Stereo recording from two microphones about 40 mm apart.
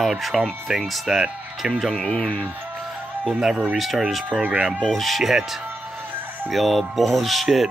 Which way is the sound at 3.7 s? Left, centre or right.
Centre.